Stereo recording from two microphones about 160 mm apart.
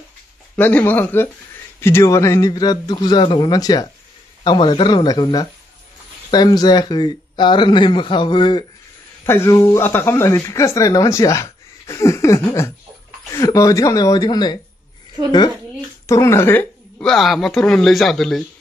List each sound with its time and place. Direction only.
0.6 s speech: 10° left (ahead or behind); by 8.6 s 30° left (ahead or behind)
9.2 s speech: 15° left (ahead or behind)
16.1 s speech: 20° left (ahead or behind); by 18.4 s centre (ahead or behind)